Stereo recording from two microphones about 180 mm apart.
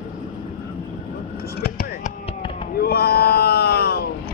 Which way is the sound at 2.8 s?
60° left (ahead or behind).